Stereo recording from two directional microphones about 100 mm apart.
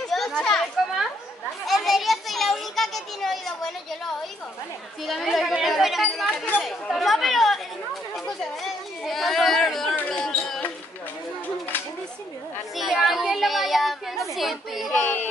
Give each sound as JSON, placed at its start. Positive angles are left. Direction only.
{"t": 0.1, "sound": "children playing", "side_deg": 5}
{"t": 5.0, "sound": "a child's voice", "side_deg": 0}
{"t": 6.6, "sound": "chatter", "side_deg": 0}
{"t": 9.9, "sound": "a sound", "side_deg": 10}
{"t": 12.7, "sound": "children playing", "side_deg": 0}
{"t": 14.3, "sound": "speech", "side_deg": 0}
{"t": 15.0, "sound": "a sound", "side_deg": 15}